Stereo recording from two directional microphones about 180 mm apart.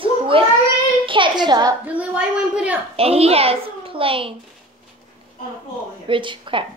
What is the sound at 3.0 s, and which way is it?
A child's voice, 35° right (ahead or behind).